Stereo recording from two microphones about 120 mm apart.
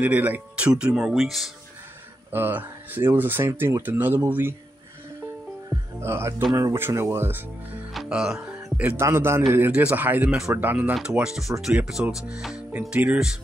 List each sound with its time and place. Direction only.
0.0 s speech: 15° right (ahead or behind)
2.3 s speech: 15° right (ahead or behind)
5.7 s speech: 20° right (ahead or behind)
7.9 s music: 5° right (ahead or behind)
9.0 s speech: 20° right (ahead or behind)